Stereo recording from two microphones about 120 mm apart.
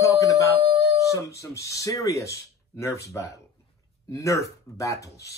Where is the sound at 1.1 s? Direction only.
25° left (ahead or behind).